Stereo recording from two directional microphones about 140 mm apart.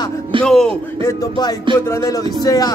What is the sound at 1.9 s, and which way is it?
Speech, 20° left (ahead or behind).